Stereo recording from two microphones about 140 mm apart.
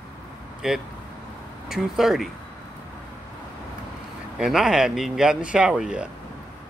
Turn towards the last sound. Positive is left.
turn(degrees=-5)  # may be behind; listen again after turning